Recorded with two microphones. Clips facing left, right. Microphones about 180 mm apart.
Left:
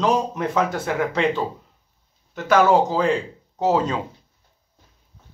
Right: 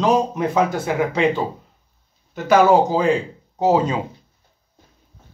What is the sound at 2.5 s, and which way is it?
Speech, 10° right (ahead or behind).